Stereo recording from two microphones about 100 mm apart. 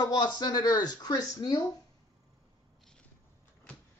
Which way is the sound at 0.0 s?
45° left (ahead or behind).